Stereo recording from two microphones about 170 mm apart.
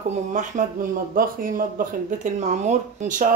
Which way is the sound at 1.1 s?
55° right (ahead or behind).